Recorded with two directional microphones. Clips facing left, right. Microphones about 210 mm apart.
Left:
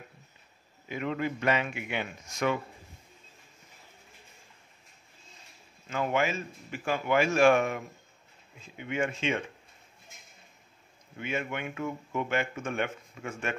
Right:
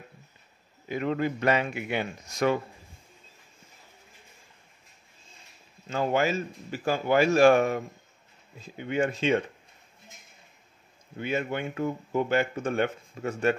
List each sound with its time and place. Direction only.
0.8 s speech: 40° right (ahead or behind)
5.9 s speech: 35° right (ahead or behind)
11.1 s speech: 35° right (ahead or behind)